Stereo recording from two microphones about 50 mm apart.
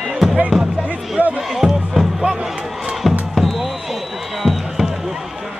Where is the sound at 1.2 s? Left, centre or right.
Right.